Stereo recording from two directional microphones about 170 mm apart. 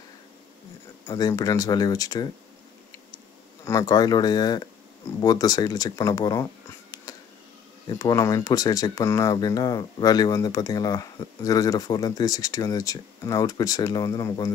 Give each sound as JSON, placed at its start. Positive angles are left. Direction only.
{"t": 1.0, "sound": "speech", "side_deg": 20}
{"t": 3.6, "sound": "speech", "side_deg": 20}